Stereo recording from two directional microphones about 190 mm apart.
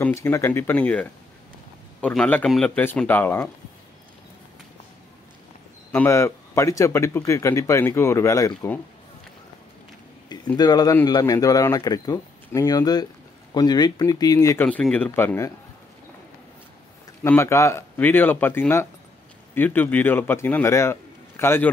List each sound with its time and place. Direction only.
0.0 s speech: 15° left (ahead or behind)
5.9 s speech: 10° left (ahead or behind)
10.3 s speech: 20° left (ahead or behind)
17.2 s a man's voice: 15° left (ahead or behind)